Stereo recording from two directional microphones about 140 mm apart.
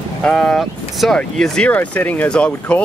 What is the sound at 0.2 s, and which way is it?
Speech, 5° left (ahead or behind).